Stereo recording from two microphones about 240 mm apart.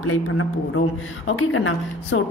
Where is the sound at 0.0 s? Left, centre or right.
Left.